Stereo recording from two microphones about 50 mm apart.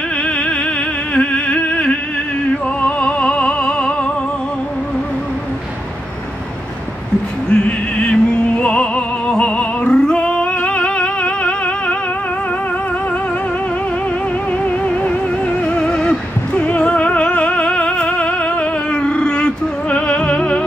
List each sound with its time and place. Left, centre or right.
0.2 s music: centre
7.4 s music: centre
14.5 s music: left